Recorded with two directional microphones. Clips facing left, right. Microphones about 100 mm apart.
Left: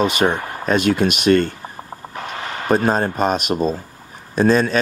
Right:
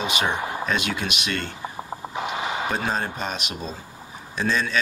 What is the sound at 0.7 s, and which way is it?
Speech, 45° left (ahead or behind).